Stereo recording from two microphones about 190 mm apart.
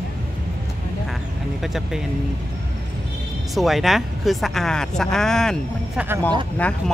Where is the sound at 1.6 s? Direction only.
Centre (ahead or behind).